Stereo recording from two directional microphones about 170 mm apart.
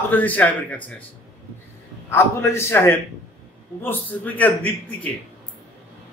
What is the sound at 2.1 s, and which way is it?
A man's voice, 15° left (ahead or behind).